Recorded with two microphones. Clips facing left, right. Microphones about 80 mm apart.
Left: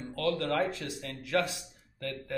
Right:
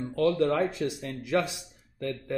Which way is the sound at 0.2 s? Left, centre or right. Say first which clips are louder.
Right 5 dB; right.